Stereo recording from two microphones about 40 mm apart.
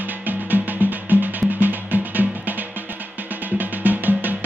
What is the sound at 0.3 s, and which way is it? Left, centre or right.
Music, right.